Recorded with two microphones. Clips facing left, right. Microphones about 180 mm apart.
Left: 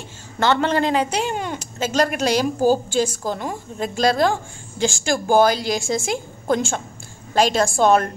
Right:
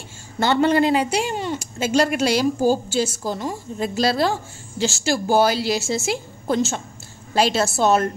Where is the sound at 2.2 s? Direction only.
45° left (ahead or behind).